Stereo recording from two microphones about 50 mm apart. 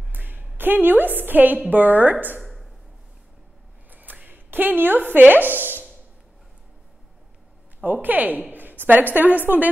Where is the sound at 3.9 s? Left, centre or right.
Right.